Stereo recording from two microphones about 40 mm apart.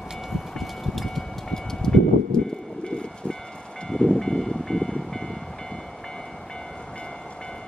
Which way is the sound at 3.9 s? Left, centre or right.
Centre.